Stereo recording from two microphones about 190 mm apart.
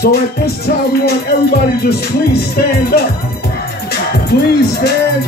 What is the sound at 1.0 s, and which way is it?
Speech, 55° left (ahead or behind).